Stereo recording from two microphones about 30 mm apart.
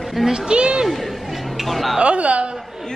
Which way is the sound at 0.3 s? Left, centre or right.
Right.